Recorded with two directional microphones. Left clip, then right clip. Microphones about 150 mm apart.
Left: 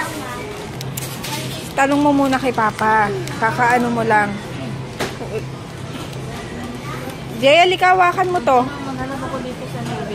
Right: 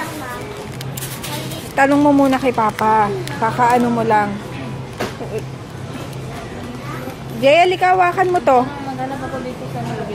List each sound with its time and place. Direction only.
1.8 s speech: 25° right (ahead or behind)
7.4 s speech: 10° right (ahead or behind)
8.2 s speech: 25° right (ahead or behind)